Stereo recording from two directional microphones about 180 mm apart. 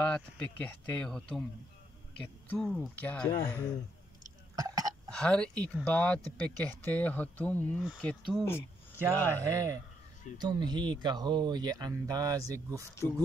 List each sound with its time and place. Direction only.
0.0 s speech: 5° left (ahead or behind)
2.4 s speech: 5° left (ahead or behind)
4.6 s cough: 20° right (ahead or behind)
5.1 s speech: 5° left (ahead or behind)
9.5 s speech: 20° right (ahead or behind)